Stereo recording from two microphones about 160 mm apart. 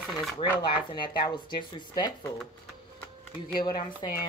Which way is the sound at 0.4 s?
30° left (ahead or behind).